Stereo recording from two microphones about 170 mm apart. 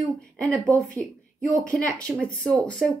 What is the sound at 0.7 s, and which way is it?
Speech, 5° left (ahead or behind).